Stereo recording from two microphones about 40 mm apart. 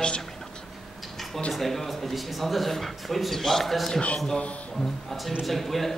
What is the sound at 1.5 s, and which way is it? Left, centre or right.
A man's voice, centre.